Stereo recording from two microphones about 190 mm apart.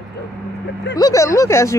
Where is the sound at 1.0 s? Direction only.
15° left (ahead or behind).